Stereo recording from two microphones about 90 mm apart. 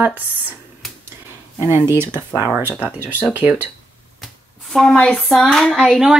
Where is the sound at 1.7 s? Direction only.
25° right (ahead or behind).